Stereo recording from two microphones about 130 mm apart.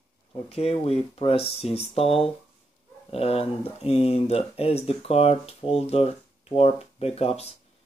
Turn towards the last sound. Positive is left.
turn(degrees=50)  # may be behind; listen again after turning